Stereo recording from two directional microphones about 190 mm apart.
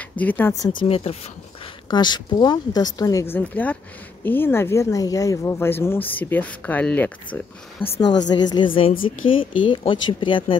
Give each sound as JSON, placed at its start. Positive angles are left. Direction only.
{"t": 0.2, "sound": "speech", "side_deg": 10}
{"t": 0.8, "sound": "speech", "side_deg": 30}
{"t": 7.8, "sound": "speech", "side_deg": 25}